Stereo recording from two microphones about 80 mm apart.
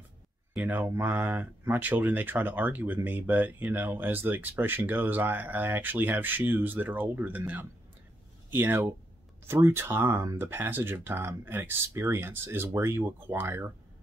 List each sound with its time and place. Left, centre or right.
0.6 s speech: centre